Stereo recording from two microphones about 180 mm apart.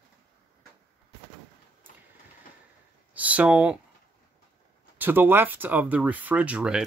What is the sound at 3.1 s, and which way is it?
Speech, 10° right (ahead or behind).